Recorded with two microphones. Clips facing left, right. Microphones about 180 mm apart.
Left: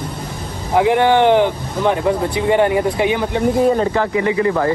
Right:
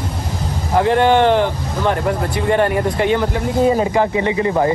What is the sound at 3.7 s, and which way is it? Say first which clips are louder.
Speech: right 1 dB; 15° right (ahead or behind).